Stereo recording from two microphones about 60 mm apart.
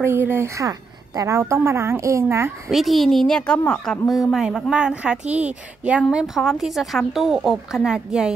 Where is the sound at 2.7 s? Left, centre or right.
Centre.